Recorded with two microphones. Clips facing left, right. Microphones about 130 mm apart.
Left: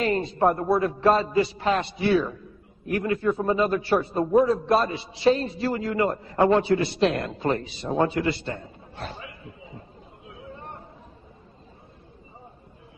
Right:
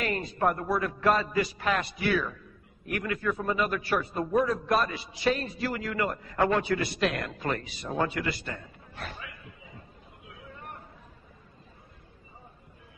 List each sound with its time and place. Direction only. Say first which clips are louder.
0.0 s a man's voice: left 6 dB; 30° left (ahead or behind)